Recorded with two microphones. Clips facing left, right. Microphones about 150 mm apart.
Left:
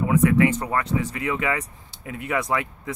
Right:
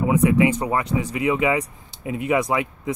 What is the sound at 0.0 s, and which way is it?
Speech, 15° right (ahead or behind).